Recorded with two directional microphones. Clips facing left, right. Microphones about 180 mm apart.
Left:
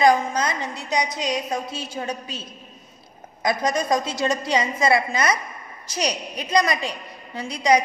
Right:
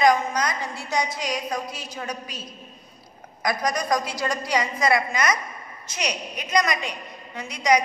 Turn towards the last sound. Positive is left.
turn(degrees=30)  # may be behind; listen again after turning